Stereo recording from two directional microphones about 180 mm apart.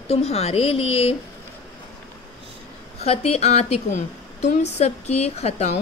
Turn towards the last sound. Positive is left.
turn(degrees=35)  # may be behind; listen again after turning